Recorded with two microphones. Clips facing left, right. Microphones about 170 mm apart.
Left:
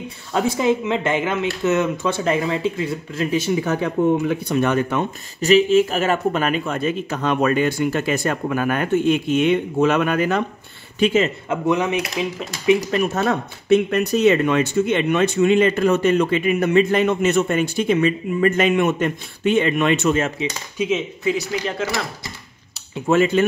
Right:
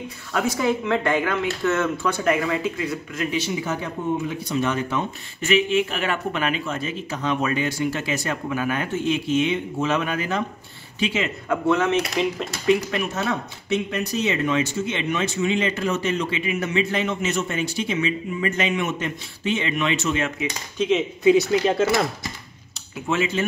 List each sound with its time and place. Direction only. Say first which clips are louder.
0.3 s speech: left 4 dB; 25° left (ahead or behind)
3.3 s speech: left 6 dB; 50° left (ahead or behind)
5.4 s speech: left 6 dB; 40° left (ahead or behind); by 10.4 s 60° left (ahead or behind)
11.0 s speech: left 7 dB; 45° left (ahead or behind)
11.4 s speech: left 1 dB; 20° left (ahead or behind)
12.9 s speech: left 5 dB; 50° left (ahead or behind)
20.7 s speech: right 1 dB; 10° left (ahead or behind)
21.2 s speech: right 6 dB; 20° right (ahead or behind)
23.0 s speech: left 7 dB; 50° left (ahead or behind)